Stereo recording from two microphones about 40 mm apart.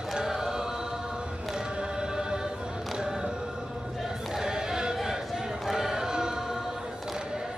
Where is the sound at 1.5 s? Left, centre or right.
Centre.